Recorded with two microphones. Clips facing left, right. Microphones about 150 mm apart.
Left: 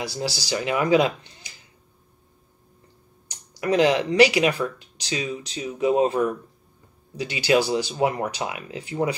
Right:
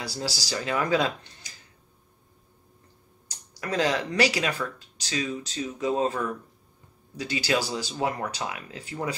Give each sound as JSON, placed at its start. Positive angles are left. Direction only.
{"t": 0.0, "sound": "speech", "side_deg": 20}
{"t": 3.6, "sound": "speech", "side_deg": 20}